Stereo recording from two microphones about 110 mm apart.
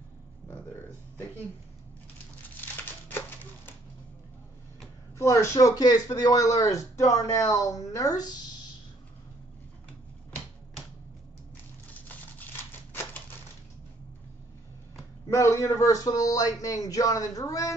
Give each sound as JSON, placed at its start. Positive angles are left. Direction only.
{"t": 2.7, "sound": "typewriter", "side_deg": 20}
{"t": 5.2, "sound": "speech", "side_deg": 25}
{"t": 15.2, "sound": "speech", "side_deg": 25}